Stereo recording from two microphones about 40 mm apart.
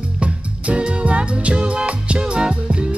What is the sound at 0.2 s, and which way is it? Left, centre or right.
Music, right.